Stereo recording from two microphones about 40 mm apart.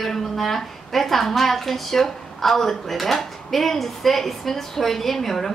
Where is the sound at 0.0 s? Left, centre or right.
Centre.